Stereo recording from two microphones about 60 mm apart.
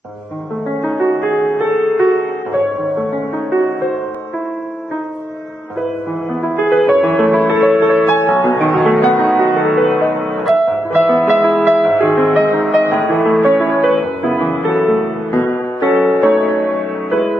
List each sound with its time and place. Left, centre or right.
0.8 s music: centre
1.1 s music: left
1.6 s music: centre
6.4 s music: centre